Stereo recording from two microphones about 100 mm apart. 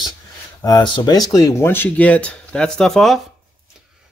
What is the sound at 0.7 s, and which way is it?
Speech, 50° left (ahead or behind).